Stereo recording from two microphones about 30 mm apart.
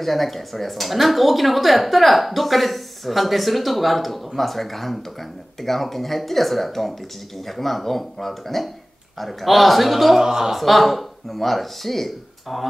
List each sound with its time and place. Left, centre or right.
0.0 s speech: centre
10.2 s speech: centre
10.5 s speech: centre